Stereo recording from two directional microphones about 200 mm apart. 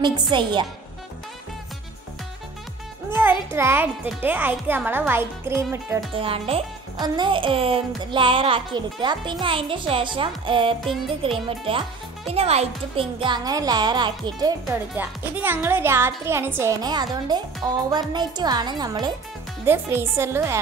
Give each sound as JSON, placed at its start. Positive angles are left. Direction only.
{"t": 0.0, "sound": "speech", "side_deg": -25}
{"t": 3.2, "sound": "a child's voice", "side_deg": -10}
{"t": 6.1, "sound": "speech", "side_deg": -25}
{"t": 15.0, "sound": "a child's voice", "side_deg": -10}